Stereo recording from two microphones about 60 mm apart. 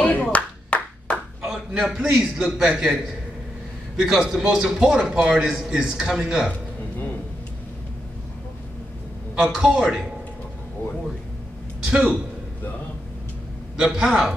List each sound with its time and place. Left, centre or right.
0.0 s clapping: left
1.4 s a man's voice: centre
9.3 s a man's voice: centre
11.8 s a man's voice: centre
13.7 s a man's voice: centre